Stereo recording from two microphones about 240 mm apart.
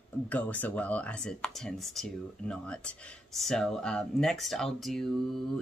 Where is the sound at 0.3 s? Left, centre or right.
Centre.